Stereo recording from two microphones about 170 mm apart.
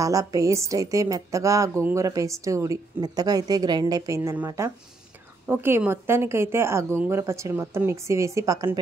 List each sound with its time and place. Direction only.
0.0 s a woman's voice: 20° right (ahead or behind)